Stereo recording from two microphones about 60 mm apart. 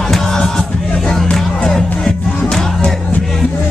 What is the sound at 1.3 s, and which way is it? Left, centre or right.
Music, centre.